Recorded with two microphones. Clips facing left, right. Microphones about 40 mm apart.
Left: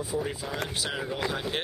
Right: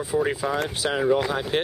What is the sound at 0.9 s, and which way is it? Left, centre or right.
Speech, right.